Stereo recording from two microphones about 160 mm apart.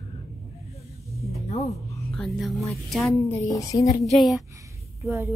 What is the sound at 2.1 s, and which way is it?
A woman's voice, centre (ahead or behind).